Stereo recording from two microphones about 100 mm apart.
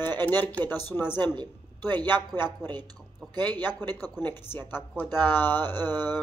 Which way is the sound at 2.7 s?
45° right (ahead or behind).